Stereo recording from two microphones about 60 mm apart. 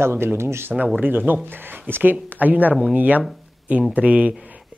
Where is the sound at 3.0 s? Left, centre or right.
Right.